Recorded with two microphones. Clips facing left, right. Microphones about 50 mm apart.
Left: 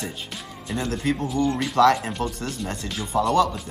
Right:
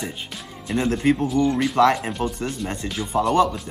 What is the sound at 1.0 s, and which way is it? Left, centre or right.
Speech, right.